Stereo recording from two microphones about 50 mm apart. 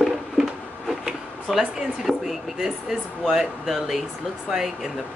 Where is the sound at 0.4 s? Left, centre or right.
Centre.